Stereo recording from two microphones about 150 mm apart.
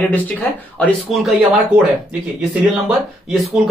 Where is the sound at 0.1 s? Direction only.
10° left (ahead or behind).